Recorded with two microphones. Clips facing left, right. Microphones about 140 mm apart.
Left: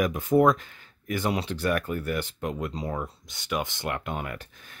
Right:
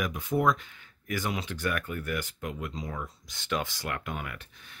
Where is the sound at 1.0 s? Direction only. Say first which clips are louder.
Left 5 dB; 30° left (ahead or behind).